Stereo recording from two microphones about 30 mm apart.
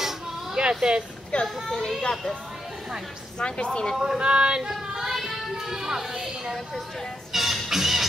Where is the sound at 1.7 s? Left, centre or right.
Centre.